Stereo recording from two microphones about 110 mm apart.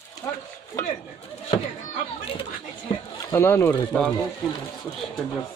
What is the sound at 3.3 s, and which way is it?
Speech, 20° left (ahead or behind).